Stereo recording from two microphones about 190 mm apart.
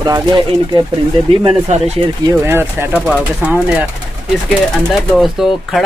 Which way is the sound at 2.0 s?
30° right (ahead or behind).